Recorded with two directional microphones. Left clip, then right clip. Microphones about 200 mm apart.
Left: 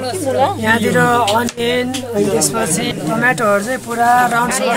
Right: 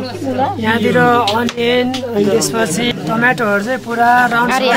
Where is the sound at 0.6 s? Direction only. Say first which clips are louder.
Right 5 dB; 5° left (ahead or behind).